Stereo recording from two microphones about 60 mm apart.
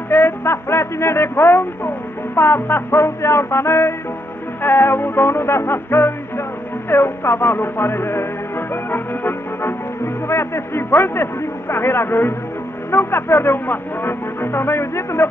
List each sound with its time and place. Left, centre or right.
0.1 s speech: left
4.6 s music: left
10.2 s speech: left
11.7 s music: left